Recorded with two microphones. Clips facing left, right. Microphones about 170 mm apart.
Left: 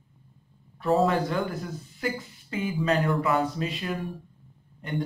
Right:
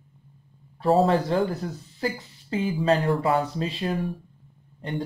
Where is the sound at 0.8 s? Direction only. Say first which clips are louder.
Right 3 dB; 30° right (ahead or behind).